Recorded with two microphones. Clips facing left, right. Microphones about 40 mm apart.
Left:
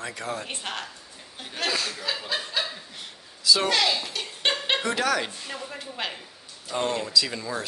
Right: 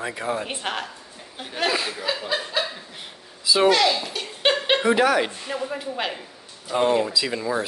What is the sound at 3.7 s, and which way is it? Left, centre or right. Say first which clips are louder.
A woman's voice: right 5 dB; centre.